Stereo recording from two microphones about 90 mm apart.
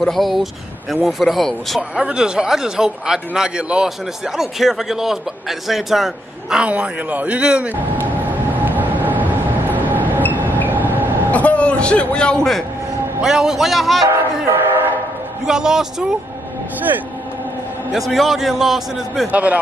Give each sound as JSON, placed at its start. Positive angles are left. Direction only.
{"t": 0.0, "sound": "a man's voice", "side_deg": 0}
{"t": 8.2, "sound": "train", "side_deg": -20}
{"t": 10.7, "sound": "vehicle", "side_deg": -20}
{"t": 11.3, "sound": "a man's voice", "side_deg": 15}
{"t": 13.2, "sound": "a man's voice", "side_deg": -5}
{"t": 14.0, "sound": "train", "side_deg": -35}
{"t": 15.4, "sound": "a man's voice", "side_deg": -5}
{"t": 17.9, "sound": "a man's voice", "side_deg": 0}
{"t": 19.3, "sound": "speech", "side_deg": -15}